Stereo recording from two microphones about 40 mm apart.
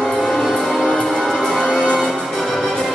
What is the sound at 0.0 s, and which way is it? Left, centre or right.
Music, centre.